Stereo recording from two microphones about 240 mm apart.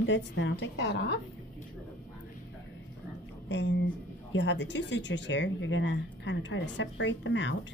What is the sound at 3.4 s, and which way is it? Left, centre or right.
Speech, left.